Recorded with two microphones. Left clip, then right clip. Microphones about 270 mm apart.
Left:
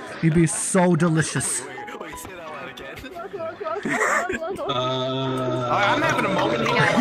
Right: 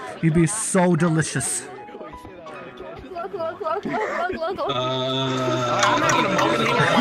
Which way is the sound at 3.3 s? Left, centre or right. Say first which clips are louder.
Right 3 dB; centre.